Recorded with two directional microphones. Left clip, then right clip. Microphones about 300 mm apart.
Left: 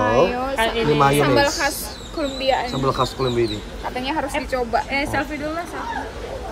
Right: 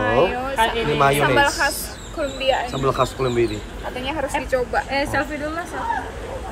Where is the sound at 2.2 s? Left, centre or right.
Left.